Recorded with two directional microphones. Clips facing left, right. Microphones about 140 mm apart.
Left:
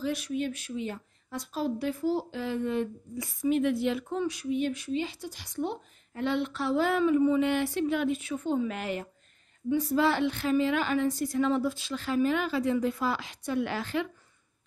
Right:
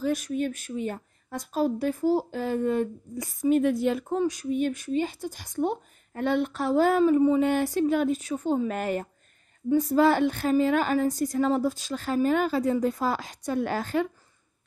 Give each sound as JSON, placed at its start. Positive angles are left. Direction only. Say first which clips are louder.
{"t": 0.0, "sound": "a woman's voice", "louder": "right 4 dB", "side_deg": -45}